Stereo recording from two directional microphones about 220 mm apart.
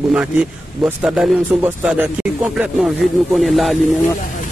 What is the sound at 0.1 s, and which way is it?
Speech, 5° right (ahead or behind).